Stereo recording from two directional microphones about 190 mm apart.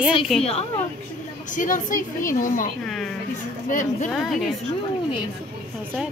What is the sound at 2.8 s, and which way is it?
Speech, 5° left (ahead or behind).